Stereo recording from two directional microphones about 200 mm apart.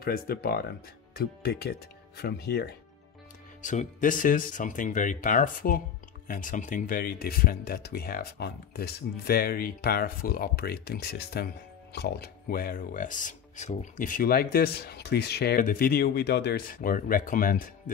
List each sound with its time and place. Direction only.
0.0 s speech: 50° left (ahead or behind)
3.6 s speech: 40° left (ahead or behind)